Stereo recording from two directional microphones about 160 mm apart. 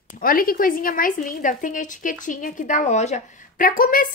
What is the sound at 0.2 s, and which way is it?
A woman's voice, 65° left (ahead or behind).